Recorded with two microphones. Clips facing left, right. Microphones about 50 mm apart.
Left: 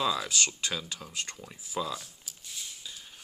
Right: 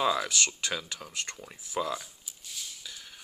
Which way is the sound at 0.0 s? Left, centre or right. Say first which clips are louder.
Right 2 dB; right.